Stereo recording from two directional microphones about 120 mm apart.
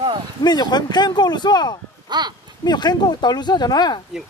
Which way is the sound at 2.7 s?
35° left (ahead or behind).